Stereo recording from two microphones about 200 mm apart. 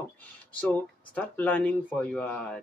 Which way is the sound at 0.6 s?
10° left (ahead or behind).